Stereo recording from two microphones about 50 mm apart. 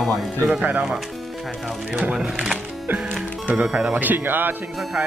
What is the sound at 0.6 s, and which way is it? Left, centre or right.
Speech, right.